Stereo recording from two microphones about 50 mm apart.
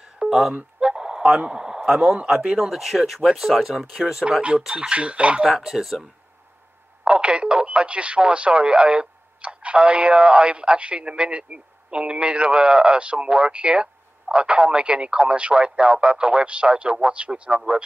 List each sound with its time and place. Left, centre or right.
0.2 s speech: centre
0.7 s a sound: centre
2.2 s speech: centre
4.4 s speech: right
5.4 s speech: centre
7.1 s speech: right